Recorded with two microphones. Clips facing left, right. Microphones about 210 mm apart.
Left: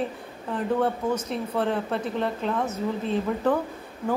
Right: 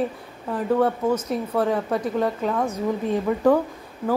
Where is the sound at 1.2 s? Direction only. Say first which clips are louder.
Right 3 dB; 10° right (ahead or behind).